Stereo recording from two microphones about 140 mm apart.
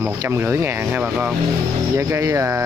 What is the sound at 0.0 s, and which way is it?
Speech, 15° right (ahead or behind).